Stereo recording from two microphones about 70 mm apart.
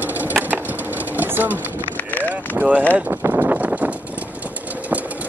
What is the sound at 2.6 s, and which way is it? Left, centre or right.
Speech, right.